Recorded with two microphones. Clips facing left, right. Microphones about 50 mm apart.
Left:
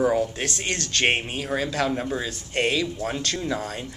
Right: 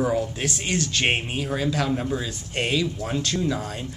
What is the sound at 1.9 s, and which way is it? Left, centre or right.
Speech, centre.